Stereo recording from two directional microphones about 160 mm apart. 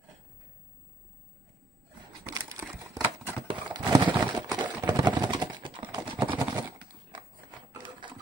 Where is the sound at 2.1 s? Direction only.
20° right (ahead or behind).